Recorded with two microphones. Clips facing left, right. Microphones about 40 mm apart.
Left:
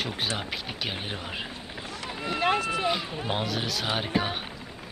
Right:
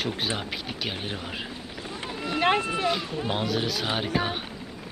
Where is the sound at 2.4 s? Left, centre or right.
Right.